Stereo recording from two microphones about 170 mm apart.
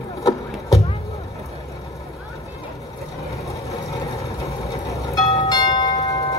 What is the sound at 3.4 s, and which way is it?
Vehicle, 20° left (ahead or behind).